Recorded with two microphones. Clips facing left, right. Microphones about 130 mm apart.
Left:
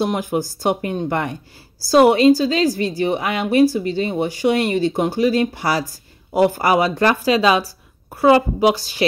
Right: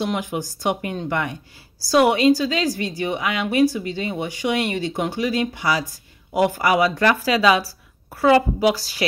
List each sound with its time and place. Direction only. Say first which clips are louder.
0.0 s a woman's voice: left 4 dB; 35° left (ahead or behind); by 9.0 s 20° left (ahead or behind)